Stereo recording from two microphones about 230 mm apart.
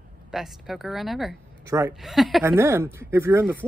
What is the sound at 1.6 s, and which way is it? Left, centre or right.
Speech, centre.